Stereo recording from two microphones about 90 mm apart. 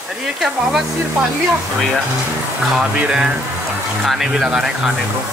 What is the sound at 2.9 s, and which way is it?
Speech, 15° right (ahead or behind).